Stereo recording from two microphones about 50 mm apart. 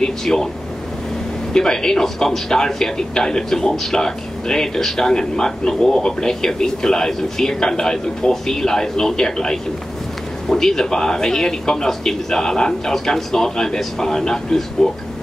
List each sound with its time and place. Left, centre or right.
0.0 s a man's voice: centre
1.5 s a man's voice: centre